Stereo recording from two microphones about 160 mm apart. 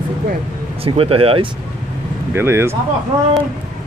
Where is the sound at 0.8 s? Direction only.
35° right (ahead or behind).